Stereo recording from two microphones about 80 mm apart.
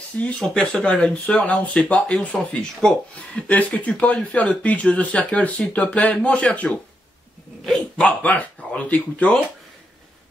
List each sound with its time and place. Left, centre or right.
0.1 s speech: centre
8.0 s speech: centre